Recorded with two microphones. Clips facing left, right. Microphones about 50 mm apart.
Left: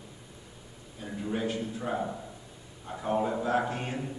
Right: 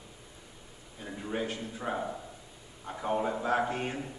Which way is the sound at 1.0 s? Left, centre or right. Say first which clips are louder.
Left 2 dB; centre.